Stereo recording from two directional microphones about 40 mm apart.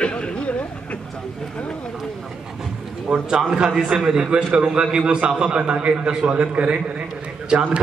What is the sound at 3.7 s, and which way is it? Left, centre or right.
A man's voice, centre.